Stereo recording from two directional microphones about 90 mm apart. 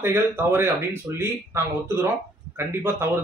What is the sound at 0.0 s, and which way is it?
A man's voice, 25° right (ahead or behind).